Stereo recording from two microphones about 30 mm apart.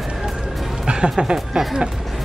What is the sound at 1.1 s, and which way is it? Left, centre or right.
Speech, right.